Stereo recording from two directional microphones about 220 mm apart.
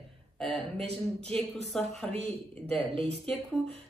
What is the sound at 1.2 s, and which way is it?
Speech, 5° left (ahead or behind).